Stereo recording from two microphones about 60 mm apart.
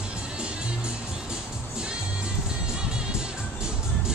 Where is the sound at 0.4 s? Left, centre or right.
Centre.